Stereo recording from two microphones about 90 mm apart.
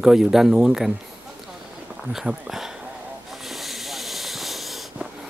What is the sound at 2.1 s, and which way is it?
Speech, 5° right (ahead or behind).